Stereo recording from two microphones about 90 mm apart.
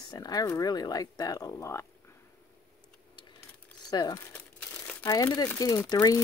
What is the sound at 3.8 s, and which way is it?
Speech, 50° left (ahead or behind).